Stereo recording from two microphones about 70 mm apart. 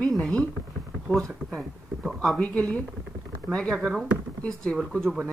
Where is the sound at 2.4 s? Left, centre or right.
Centre.